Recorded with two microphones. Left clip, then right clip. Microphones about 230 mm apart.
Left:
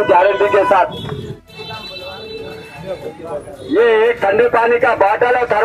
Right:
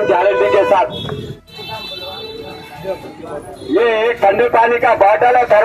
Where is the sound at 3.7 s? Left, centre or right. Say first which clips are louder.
Left 2 dB; left.